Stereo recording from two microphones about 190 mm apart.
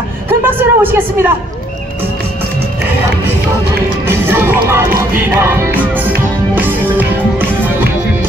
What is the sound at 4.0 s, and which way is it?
Music, 10° right (ahead or behind).